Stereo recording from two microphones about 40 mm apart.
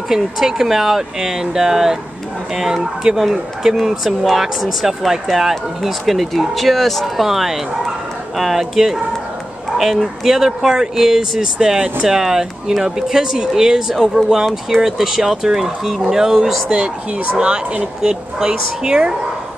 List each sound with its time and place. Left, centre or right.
0.1 s speech: centre
7.2 s speech: centre
10.2 s speech: centre
16.6 s speech: right